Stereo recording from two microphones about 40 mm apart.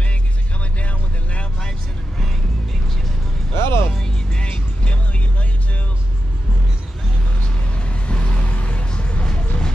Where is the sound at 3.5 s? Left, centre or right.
Left.